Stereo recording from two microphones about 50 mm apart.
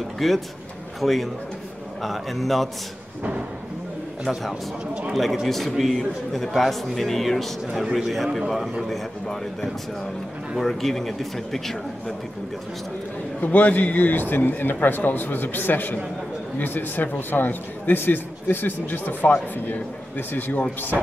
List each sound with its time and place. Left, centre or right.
0.2 s a man's voice: centre
5.1 s a man's voice: centre
13.4 s speech: left